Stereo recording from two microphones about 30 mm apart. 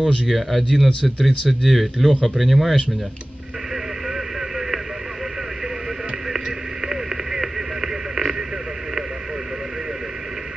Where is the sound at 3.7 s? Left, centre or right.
Centre.